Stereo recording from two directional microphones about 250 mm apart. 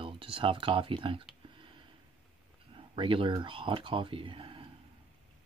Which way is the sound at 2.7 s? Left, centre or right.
Right.